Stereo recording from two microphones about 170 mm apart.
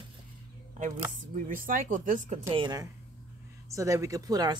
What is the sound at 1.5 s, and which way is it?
Speech, 55° right (ahead or behind).